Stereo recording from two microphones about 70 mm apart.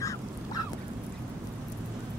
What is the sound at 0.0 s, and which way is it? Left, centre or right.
Duck, left.